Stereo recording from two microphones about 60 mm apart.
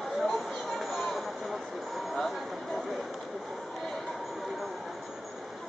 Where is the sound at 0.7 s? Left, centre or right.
Centre.